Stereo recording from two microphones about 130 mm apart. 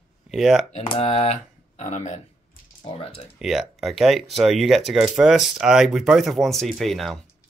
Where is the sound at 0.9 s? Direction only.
55° left (ahead or behind).